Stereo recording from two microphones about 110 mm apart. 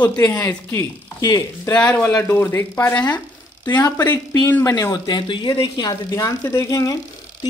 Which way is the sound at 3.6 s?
35° left (ahead or behind).